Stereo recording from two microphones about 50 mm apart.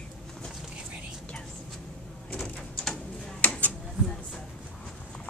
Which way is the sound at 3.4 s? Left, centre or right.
Left.